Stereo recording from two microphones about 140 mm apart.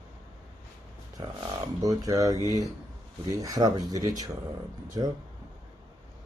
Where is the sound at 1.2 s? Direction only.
30° right (ahead or behind).